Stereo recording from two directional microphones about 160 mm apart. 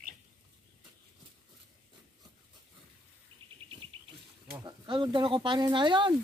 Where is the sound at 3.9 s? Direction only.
35° right (ahead or behind).